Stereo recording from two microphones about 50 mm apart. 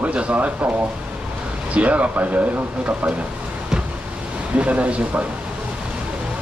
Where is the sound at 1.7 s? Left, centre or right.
Right.